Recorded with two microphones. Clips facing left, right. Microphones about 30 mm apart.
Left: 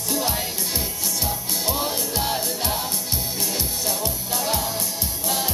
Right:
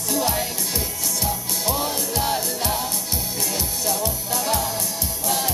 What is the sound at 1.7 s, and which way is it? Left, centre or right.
Music, centre.